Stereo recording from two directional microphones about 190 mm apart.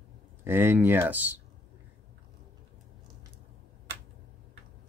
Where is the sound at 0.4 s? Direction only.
10° right (ahead or behind).